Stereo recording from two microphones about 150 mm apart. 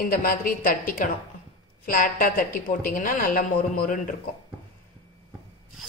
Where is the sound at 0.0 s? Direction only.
75° left (ahead or behind).